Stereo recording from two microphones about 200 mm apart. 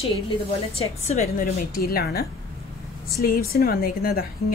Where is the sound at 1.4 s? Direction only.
50° left (ahead or behind).